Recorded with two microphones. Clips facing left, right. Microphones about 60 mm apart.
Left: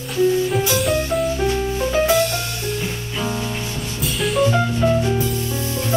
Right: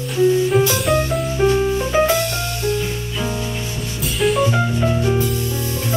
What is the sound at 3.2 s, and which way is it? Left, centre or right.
Music, centre.